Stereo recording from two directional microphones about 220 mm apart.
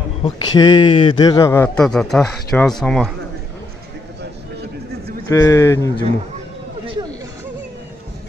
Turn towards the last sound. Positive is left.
turn(degrees=-15)  # may be behind; listen again after turning